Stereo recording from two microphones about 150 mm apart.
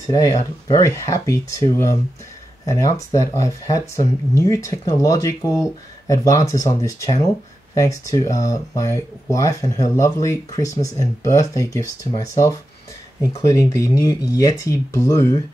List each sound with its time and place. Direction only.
0.0 s speech: 20° left (ahead or behind)